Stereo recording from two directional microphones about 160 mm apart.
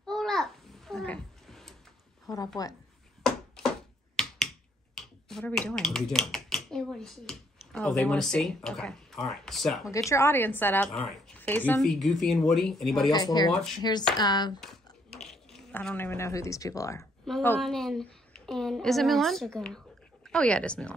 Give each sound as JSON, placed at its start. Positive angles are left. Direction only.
{"t": 0.0, "sound": "babbling", "side_deg": 5}
{"t": 2.2, "sound": "a woman's voice", "side_deg": 20}
{"t": 4.2, "sound": "finger snapping", "side_deg": 0}
{"t": 4.9, "sound": "a woman's voice", "side_deg": 0}
{"t": 9.8, "sound": "a woman's voice", "side_deg": 20}
{"t": 11.8, "sound": "a woman's voice", "side_deg": 0}
{"t": 13.1, "sound": "a woman's voice", "side_deg": 25}
{"t": 14.6, "sound": "mechanisms", "side_deg": 0}
{"t": 17.3, "sound": "a woman's voice", "side_deg": 0}